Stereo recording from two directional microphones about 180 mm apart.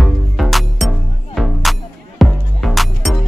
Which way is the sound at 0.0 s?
Centre (ahead or behind).